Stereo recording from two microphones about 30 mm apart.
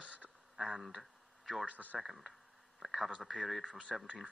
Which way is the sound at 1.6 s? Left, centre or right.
Right.